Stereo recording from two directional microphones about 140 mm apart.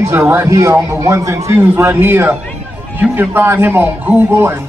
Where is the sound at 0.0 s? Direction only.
15° right (ahead or behind).